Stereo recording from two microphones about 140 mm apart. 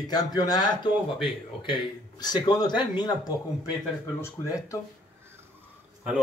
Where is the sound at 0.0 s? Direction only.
30° left (ahead or behind).